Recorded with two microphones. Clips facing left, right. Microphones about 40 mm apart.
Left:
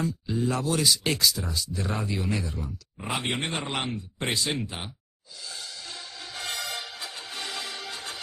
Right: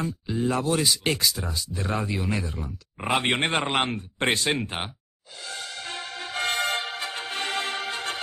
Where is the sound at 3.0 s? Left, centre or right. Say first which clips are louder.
Right 6 dB; right.